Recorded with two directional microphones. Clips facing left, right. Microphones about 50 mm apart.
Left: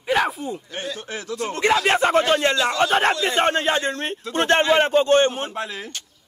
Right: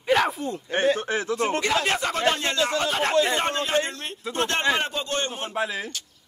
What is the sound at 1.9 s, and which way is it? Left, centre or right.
Speech, left.